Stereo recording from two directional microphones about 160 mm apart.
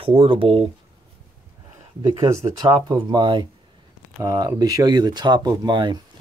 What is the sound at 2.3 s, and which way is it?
Speech, 20° right (ahead or behind).